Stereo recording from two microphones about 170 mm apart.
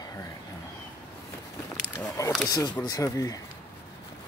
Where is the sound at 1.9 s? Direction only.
20° left (ahead or behind).